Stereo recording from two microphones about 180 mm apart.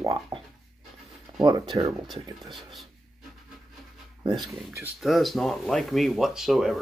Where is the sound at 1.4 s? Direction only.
20° right (ahead or behind).